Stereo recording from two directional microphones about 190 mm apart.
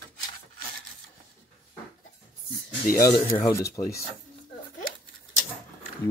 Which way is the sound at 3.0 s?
20° left (ahead or behind).